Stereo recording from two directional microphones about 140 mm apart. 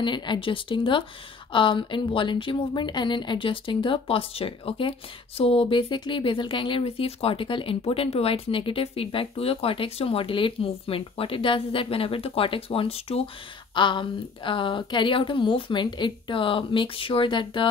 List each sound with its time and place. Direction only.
0.0 s speech: 35° left (ahead or behind)
13.7 s speech: 35° left (ahead or behind)